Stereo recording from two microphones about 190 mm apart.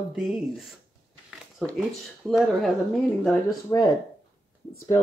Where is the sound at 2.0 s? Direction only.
Centre (ahead or behind).